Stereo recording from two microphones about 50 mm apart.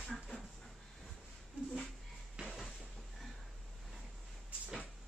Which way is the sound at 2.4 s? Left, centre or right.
Centre.